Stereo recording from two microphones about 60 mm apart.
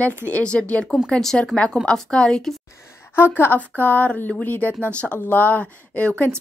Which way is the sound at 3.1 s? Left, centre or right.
Left.